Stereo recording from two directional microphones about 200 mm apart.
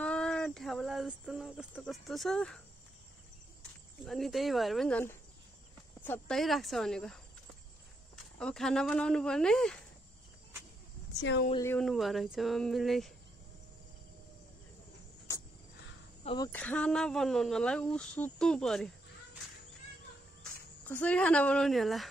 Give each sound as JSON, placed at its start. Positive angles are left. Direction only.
{"t": 0.0, "sound": "speech", "side_deg": 5}
{"t": 4.0, "sound": "speech", "side_deg": 0}
{"t": 8.4, "sound": "speech", "side_deg": 5}
{"t": 11.1, "sound": "speech", "side_deg": 60}
{"t": 11.5, "sound": "speech", "side_deg": 15}
{"t": 11.8, "sound": "speech", "side_deg": 0}
{"t": 16.5, "sound": "speech", "side_deg": 5}
{"t": 20.8, "sound": "speech", "side_deg": 10}